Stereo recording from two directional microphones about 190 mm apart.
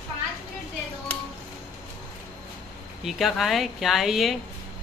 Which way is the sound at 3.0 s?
Centre (ahead or behind).